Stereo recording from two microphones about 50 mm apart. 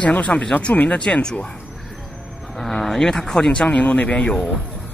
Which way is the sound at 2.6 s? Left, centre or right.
Centre.